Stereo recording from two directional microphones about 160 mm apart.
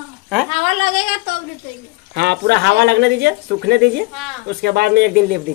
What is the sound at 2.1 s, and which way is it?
Speech, 90° right.